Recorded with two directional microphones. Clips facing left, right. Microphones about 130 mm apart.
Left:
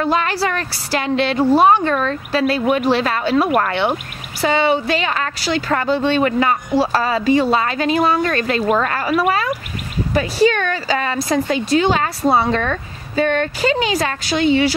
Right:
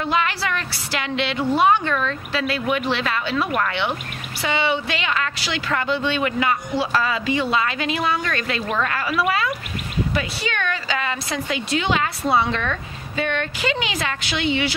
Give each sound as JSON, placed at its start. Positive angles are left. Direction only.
{"t": 0.0, "sound": "a woman's voice", "side_deg": 40}